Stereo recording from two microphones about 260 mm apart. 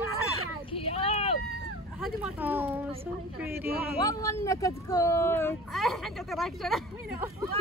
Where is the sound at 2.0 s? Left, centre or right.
Centre.